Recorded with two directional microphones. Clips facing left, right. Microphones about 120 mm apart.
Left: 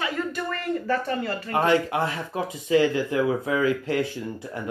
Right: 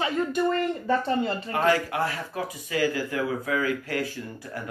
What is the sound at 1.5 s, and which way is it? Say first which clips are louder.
Speech: left 2 dB; 25° left (ahead or behind).